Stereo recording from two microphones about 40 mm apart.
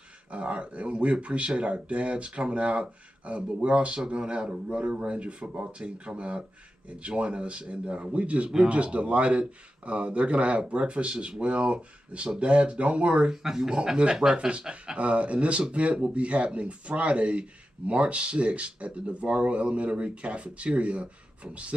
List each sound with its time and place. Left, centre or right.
0.3 s speech: right
13.3 s speech: centre
15.0 s speech: right